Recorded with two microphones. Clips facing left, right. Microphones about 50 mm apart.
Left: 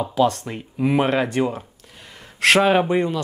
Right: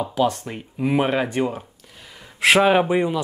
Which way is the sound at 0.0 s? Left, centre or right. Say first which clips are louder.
Left 2 dB; centre.